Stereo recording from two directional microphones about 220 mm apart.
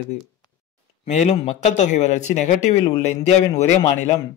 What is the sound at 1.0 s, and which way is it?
Speech, 30° left (ahead or behind).